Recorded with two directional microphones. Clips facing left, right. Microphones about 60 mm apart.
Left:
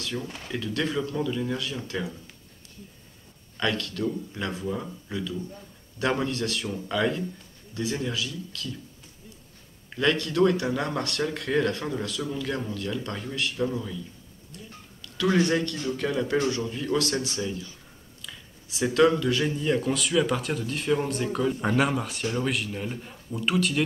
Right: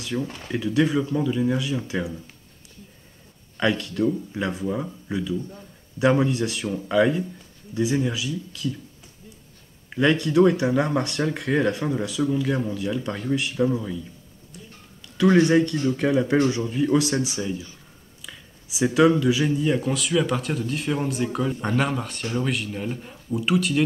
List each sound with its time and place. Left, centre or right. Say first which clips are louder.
0.0 s speech: right 5 dB; centre
3.5 s speech: right 5 dB; centre
9.8 s speech: right 4 dB; centre
15.0 s speech: right 6 dB; right
18.2 s a sound: right 1 dB; centre
18.9 s speech: right 3 dB; centre